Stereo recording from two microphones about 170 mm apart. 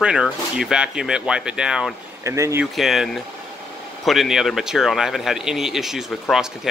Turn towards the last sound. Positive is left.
turn(degrees=0)  # may be behind; listen again after turning